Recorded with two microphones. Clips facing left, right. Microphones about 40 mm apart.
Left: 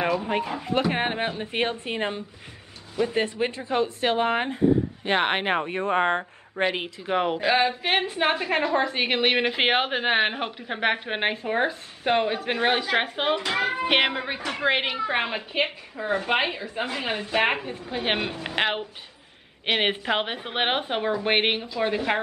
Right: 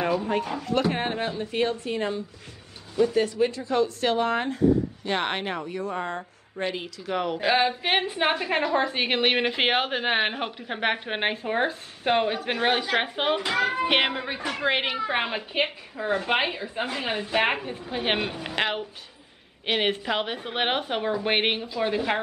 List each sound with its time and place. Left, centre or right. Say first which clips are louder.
0.3 s speech: even; centre
5.5 s speech: left 6 dB; left
7.1 s speech: left 3 dB; left
7.3 s a woman's voice: left 1 dB; centre
13.5 s a woman's voice: even; centre
18.4 s a woman's voice: left 1 dB; centre